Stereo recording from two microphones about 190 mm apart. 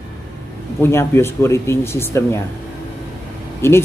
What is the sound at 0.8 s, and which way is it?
Speech, 15° left (ahead or behind).